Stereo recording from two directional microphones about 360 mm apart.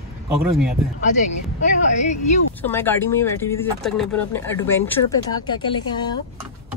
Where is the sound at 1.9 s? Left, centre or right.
Centre.